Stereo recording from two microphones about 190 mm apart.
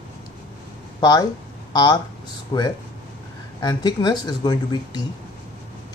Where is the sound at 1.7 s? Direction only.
20° left (ahead or behind).